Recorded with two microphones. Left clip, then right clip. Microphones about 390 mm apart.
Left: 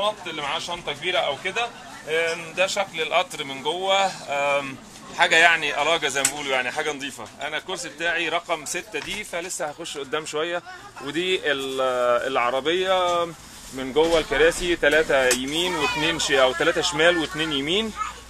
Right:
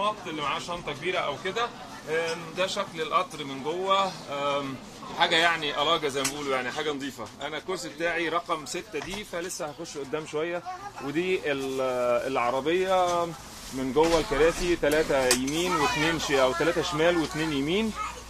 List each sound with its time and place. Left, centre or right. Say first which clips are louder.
0.0 s a man's voice: left 3 dB; centre
3.8 s a man's voice: left 3 dB; centre
10.1 s speech: left 4 dB; left